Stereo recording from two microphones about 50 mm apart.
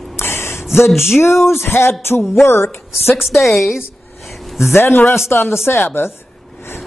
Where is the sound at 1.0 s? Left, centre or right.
Left.